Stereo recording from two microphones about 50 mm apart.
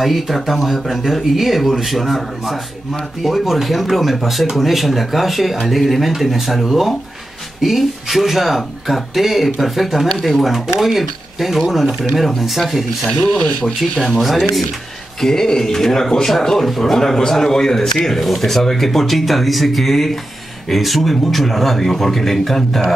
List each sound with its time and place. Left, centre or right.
0.0 s speech: centre
13.4 s speech: left
13.7 s speech: centre